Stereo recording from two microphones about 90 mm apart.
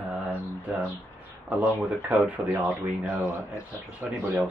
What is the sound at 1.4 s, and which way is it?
Speech, 15° right (ahead or behind).